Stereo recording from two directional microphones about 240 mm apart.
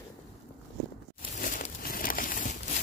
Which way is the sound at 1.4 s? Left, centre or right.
Left.